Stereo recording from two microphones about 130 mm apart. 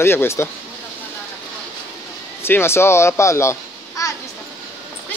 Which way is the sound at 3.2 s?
20° left (ahead or behind).